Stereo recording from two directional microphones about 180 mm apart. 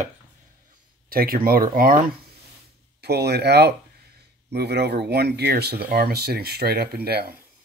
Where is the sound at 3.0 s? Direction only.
65° right (ahead or behind).